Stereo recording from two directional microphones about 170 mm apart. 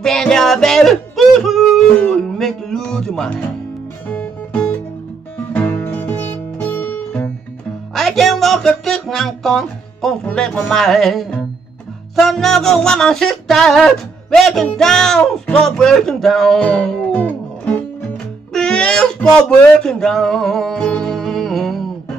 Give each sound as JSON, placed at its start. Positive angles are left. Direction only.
{"t": 0.0, "sound": "music", "side_deg": 5}
{"t": 18.5, "sound": "speech", "side_deg": 5}